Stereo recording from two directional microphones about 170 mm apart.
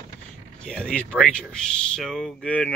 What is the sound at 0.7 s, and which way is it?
Speech, 5° left (ahead or behind).